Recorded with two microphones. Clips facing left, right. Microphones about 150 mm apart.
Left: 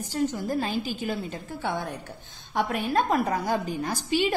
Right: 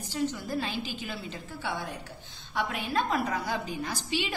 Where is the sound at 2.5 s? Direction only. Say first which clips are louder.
Left 5 dB; 45° left (ahead or behind).